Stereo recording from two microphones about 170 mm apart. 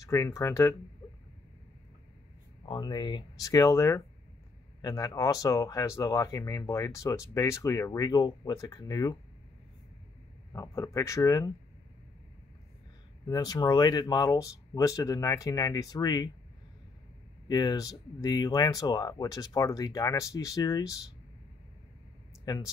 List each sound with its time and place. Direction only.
0.0 s speech: 20° left (ahead or behind)
2.6 s speech: 25° left (ahead or behind)
10.5 s speech: 15° left (ahead or behind)
13.3 s speech: 25° left (ahead or behind)
17.5 s speech: 25° left (ahead or behind)
22.4 s speech: 20° left (ahead or behind)